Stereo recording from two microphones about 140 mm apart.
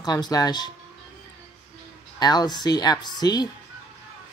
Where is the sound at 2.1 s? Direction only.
30° left (ahead or behind).